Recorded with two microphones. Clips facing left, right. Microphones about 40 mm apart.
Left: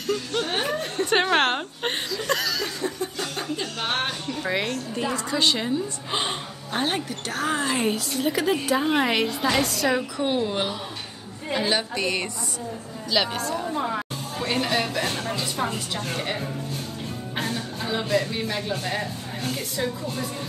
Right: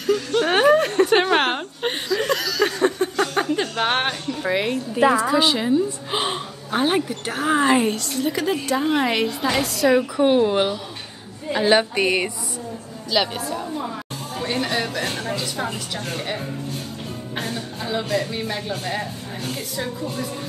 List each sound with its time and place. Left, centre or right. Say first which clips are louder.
0.0 s a sound: right 6 dB; centre
0.7 s a sound: right 9 dB; right
1.0 s speech: right 3 dB; centre
2.6 s a sound: right 9 dB; right
3.2 s music: right 8 dB; right
4.3 s a woman's voice: right 3 dB; centre
7.8 s a woman's voice: right 2 dB; centre; by 12.3 s right
13.1 s a woman's voice: right 2 dB; centre
13.7 s music: left 2 dB; left
14.5 s a woman's voice: even; centre
17.4 s music: even; centre
18.3 s a woman's voice: right 1 dB; centre